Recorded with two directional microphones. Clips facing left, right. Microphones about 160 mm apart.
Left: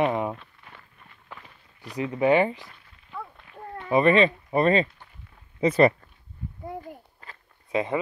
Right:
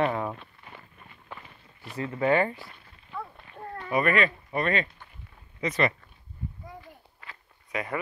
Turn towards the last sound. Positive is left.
turn(degrees=25)  # may be behind; listen again after turning